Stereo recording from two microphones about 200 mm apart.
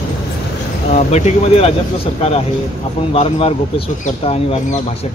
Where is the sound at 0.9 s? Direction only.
35° left (ahead or behind).